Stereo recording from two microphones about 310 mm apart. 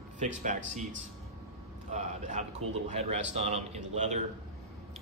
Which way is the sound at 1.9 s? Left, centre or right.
Right.